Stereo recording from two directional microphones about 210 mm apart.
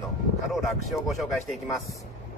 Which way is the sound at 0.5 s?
Centre (ahead or behind).